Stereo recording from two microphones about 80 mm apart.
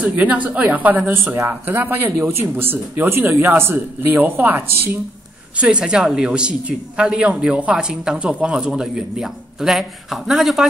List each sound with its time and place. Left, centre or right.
0.0 s speech: centre
5.6 s speech: centre